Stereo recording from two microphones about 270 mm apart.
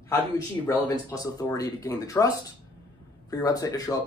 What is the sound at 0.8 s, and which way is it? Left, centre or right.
Speech, centre.